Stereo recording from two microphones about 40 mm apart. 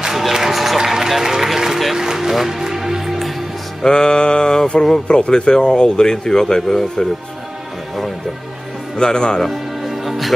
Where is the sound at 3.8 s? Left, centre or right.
Left.